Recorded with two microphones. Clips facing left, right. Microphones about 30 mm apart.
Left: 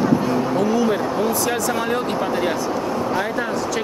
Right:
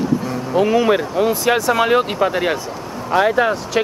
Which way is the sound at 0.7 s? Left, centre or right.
Right.